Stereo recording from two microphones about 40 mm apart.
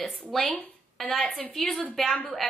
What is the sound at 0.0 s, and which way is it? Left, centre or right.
A woman's voice, centre.